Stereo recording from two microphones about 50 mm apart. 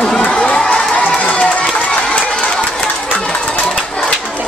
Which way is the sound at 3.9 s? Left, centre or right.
Centre.